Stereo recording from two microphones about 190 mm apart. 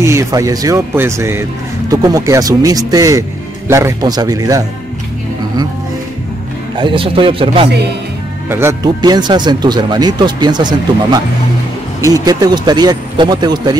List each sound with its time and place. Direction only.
0.0 s speech: 15° right (ahead or behind)
6.8 s speech: 25° right (ahead or behind)
8.5 s speech: 15° right (ahead or behind)